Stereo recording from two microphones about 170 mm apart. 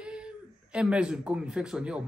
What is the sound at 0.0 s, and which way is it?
Speech, 5° right (ahead or behind).